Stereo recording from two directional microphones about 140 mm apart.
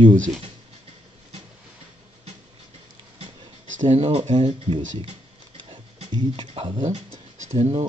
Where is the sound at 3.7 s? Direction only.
50° right (ahead or behind).